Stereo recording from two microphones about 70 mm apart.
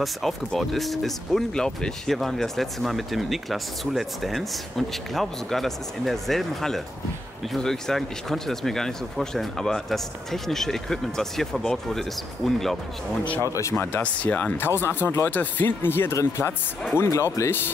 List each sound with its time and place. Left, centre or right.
0.0 s speech: centre
13.4 s speech: left
14.0 s speech: left